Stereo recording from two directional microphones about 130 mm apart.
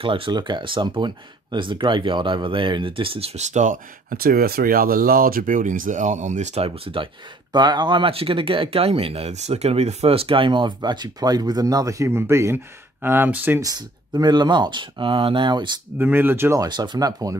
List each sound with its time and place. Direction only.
0.0 s speech: 45° right (ahead or behind)
7.5 s speech: 35° right (ahead or behind); by 13.6 s 15° right (ahead or behind)
13.6 s speech: 30° right (ahead or behind)
16.0 s speech: 15° right (ahead or behind)
16.6 s speech: 35° right (ahead or behind)